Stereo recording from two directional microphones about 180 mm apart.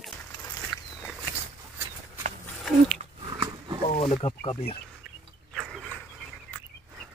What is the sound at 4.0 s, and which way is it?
Speech, 35° left (ahead or behind).